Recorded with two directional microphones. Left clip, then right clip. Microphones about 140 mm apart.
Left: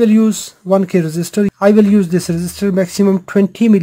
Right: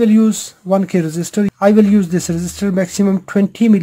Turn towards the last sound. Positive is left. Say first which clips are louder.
# left 2 dB
turn(degrees=25)  # may be behind; listen again after turning